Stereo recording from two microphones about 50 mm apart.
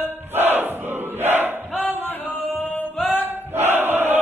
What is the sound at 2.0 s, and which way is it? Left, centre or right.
Singing, left.